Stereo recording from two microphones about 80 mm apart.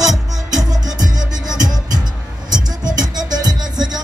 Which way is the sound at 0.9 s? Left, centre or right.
Right.